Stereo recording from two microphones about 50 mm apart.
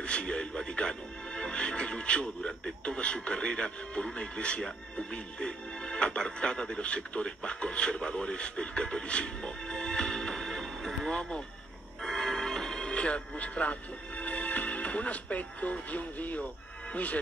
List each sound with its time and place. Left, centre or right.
0.0 s speech: left
12.0 s music: centre; by 16.4 s left
16.9 s speech: left